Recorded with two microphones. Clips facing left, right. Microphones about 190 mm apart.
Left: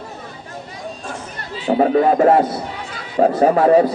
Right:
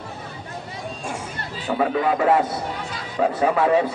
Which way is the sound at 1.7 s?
40° left (ahead or behind).